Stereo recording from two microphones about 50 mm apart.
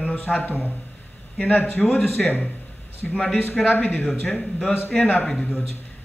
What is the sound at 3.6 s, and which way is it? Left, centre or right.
Speech, left.